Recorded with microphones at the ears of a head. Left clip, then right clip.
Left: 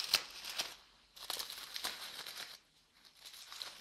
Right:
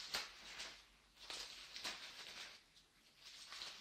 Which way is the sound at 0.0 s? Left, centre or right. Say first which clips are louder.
Left 11 dB; left.